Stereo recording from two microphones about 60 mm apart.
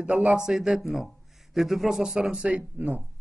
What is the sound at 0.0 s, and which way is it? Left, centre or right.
A man's voice, centre.